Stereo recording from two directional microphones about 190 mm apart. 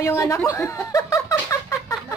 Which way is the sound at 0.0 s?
15° left (ahead or behind).